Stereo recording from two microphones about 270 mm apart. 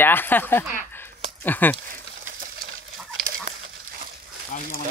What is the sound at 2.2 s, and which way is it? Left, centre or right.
Bird, right.